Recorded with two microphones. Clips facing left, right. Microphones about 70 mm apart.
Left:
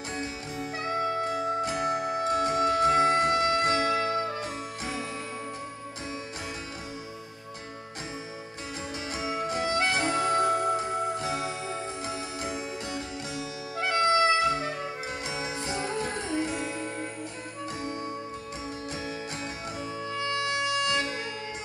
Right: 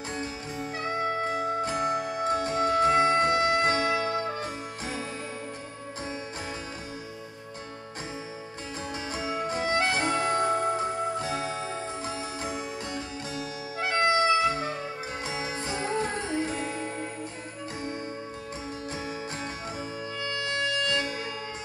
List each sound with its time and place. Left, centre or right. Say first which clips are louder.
0.1 s music: even; right
9.5 s music: right 1 dB; right
20.2 s music: left 1 dB; centre